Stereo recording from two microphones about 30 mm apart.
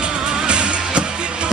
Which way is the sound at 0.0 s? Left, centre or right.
Right.